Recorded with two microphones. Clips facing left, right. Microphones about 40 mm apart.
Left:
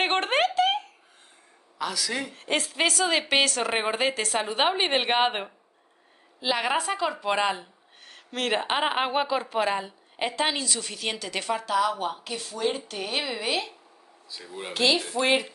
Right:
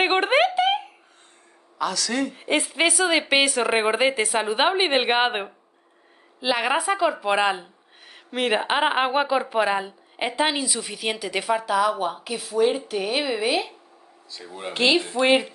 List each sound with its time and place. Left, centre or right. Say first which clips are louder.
0.0 s a sound: right 4 dB; centre
1.8 s speech: right 5 dB; centre
2.3 s speech: right 4 dB; centre
14.7 s speech: right 3 dB; right